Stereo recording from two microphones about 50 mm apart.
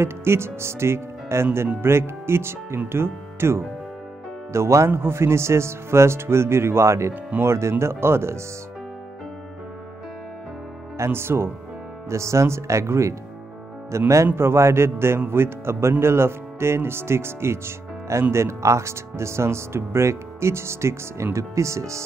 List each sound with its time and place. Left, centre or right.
0.0 s speech: right
4.5 s speech: right
11.0 s speech: right
12.1 s speech: right